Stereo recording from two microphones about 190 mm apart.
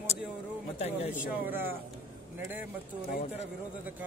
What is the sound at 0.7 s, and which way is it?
Speech, 35° left (ahead or behind).